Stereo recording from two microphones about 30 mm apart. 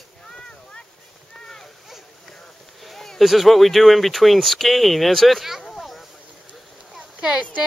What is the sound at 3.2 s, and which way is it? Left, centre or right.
Speech, centre.